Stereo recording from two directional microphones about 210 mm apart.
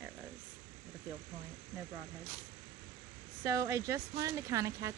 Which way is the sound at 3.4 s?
15° right (ahead or behind).